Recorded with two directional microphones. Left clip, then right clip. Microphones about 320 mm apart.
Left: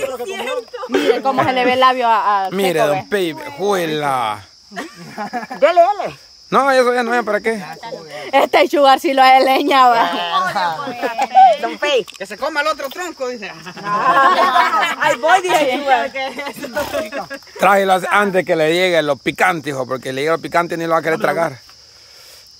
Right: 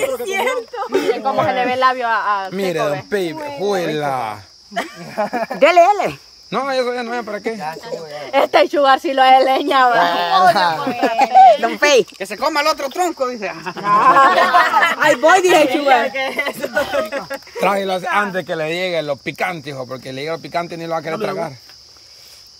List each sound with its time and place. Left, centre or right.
0.0 s speech: centre
1.2 s speech: left
2.5 s speech: centre
4.7 s speech: centre
5.6 s speech: right
6.5 s speech: centre
8.2 s speech: left
9.9 s speech: right
16.2 s speech: centre
17.6 s speech: centre
18.3 s speech: left
18.6 s speech: centre